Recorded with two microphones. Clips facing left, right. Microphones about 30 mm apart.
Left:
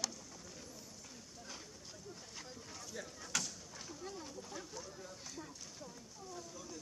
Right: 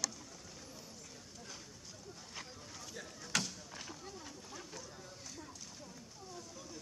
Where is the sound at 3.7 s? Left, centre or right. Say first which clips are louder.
Right 2 dB; right.